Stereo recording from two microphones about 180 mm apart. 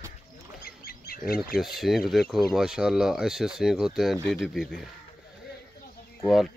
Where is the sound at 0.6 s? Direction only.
55° left (ahead or behind).